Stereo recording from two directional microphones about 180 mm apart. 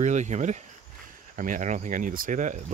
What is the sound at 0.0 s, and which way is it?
Speech, 40° right (ahead or behind).